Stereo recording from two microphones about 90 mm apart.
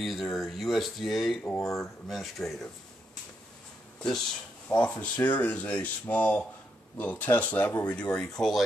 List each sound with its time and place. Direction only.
0.0 s speech: centre (ahead or behind)
4.6 s speech: 15° left (ahead or behind)